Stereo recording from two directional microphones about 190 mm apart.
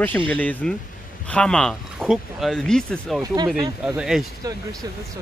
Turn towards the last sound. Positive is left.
turn(degrees=-20)  # may be behind; listen again after turning